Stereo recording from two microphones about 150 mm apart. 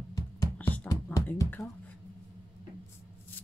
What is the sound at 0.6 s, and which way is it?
Music, 10° left (ahead or behind).